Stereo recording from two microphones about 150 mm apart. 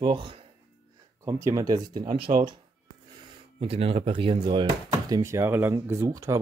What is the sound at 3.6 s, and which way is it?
Speech, 40° right (ahead or behind).